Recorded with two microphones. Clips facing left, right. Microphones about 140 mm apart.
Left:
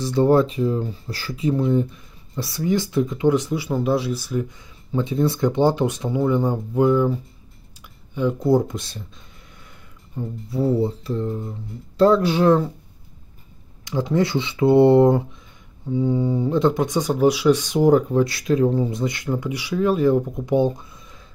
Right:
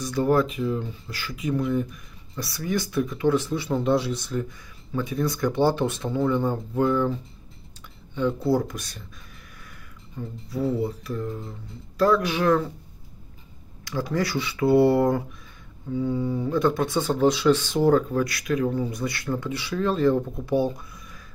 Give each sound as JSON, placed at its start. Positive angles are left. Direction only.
{"t": 0.0, "sound": "speech", "side_deg": 30}
{"t": 4.9, "sound": "speech", "side_deg": 25}
{"t": 10.1, "sound": "speech", "side_deg": 30}
{"t": 13.8, "sound": "speech", "side_deg": 20}